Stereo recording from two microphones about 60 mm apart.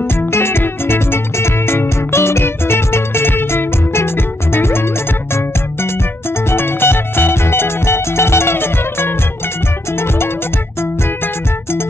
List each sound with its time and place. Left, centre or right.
0.3 s music: left
6.5 s music: left